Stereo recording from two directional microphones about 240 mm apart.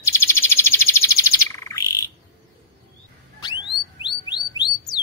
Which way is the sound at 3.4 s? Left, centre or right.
Centre.